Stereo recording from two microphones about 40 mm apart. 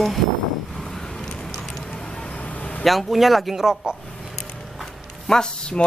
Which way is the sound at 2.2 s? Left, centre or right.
Left.